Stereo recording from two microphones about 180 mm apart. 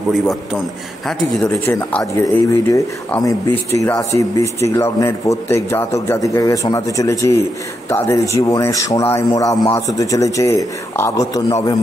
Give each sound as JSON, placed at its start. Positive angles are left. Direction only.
{"t": 1.0, "sound": "speech", "side_deg": 10}